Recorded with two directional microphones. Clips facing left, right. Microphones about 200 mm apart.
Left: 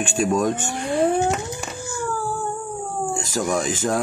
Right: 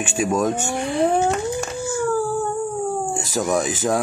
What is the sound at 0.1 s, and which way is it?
Speech, centre (ahead or behind).